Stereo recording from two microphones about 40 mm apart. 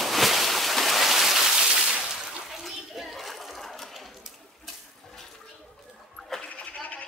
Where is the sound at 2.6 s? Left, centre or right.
Centre.